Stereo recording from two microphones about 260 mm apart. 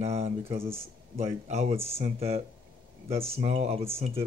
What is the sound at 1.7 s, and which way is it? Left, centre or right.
Speech, centre.